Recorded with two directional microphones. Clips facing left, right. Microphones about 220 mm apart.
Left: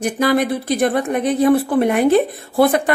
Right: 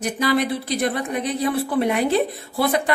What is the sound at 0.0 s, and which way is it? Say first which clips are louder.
Speech: left 4 dB; 50° left (ahead or behind).